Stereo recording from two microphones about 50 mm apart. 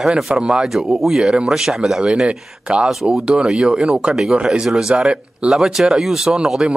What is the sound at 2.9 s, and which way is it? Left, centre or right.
A man's voice, centre.